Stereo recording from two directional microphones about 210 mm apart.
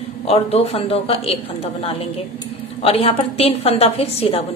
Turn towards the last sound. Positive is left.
turn(degrees=30)  # may be behind; listen again after turning